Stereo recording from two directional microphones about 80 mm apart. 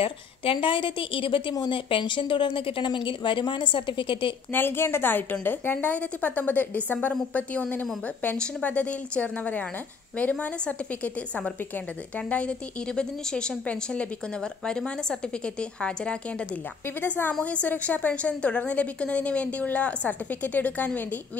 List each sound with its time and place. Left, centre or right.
0.5 s speech: left
4.5 s a woman's voice: left
12.3 s a woman's voice: centre
17.3 s a woman's voice: centre